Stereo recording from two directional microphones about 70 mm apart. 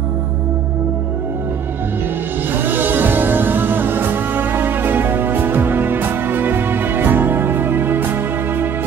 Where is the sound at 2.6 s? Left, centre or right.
Right.